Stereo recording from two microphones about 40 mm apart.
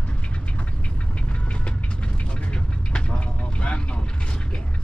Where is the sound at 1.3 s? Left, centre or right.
Left.